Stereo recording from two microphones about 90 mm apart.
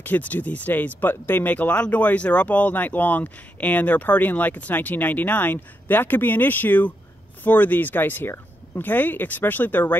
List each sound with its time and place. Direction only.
0.0 s speech: 20° left (ahead or behind)